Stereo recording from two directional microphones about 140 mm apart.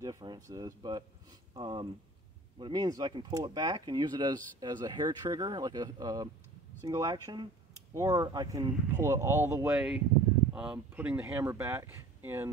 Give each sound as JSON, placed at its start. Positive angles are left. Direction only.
{"t": 0.0, "sound": "speech", "side_deg": -25}
{"t": 9.8, "sound": "speech", "side_deg": -5}